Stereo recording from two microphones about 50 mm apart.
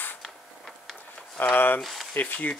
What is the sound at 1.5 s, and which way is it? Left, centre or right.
Speech, left.